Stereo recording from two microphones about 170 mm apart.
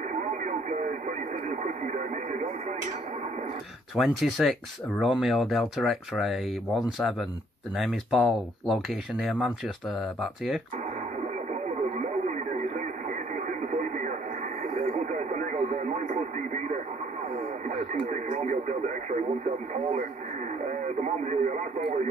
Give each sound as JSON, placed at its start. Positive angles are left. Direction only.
{"t": 0.1, "sound": "radio", "side_deg": -50}
{"t": 3.9, "sound": "speech", "side_deg": 0}
{"t": 11.6, "sound": "radio", "side_deg": -45}